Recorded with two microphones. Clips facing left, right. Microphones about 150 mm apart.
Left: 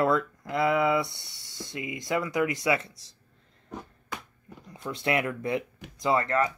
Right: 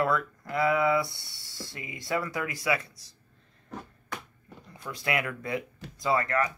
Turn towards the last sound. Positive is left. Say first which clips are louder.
# left 2 dB
turn(degrees=25)  # may be behind; listen again after turning